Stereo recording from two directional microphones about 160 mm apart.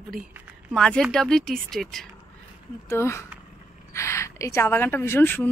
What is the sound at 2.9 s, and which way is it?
A woman's voice, 15° left (ahead or behind).